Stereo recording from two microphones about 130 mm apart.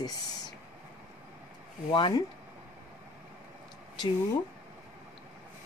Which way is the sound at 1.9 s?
35° left (ahead or behind).